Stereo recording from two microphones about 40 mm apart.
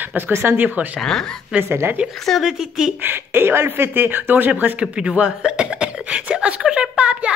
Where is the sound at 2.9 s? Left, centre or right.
Right.